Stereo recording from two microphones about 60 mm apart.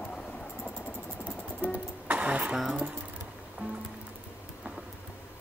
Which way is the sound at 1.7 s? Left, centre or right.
Right.